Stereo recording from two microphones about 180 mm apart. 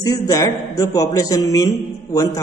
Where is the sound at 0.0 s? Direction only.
20° left (ahead or behind).